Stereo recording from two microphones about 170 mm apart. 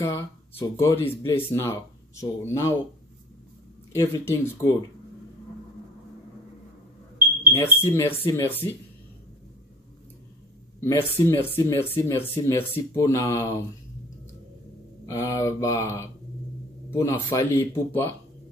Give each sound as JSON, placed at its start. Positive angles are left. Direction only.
{"t": 0.0, "sound": "speech", "side_deg": 15}
{"t": 3.9, "sound": "speech", "side_deg": 15}
{"t": 7.5, "sound": "speech", "side_deg": 15}
{"t": 10.8, "sound": "speech", "side_deg": 15}
{"t": 15.0, "sound": "speech", "side_deg": 20}